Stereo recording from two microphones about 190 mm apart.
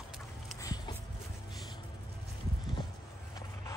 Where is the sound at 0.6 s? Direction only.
20° left (ahead or behind).